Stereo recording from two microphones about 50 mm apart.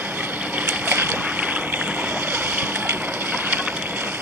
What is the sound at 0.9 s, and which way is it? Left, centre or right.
Boat, right.